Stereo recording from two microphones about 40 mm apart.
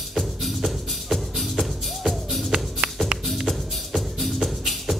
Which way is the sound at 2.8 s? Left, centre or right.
Right.